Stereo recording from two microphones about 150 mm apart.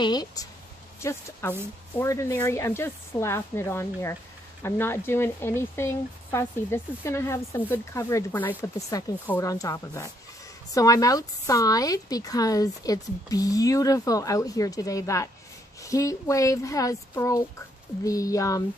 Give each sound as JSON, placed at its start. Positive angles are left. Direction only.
{"t": 0.0, "sound": "a woman's voice", "side_deg": 25}